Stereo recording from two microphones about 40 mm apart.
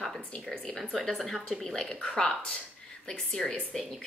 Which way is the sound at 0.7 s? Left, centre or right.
Centre.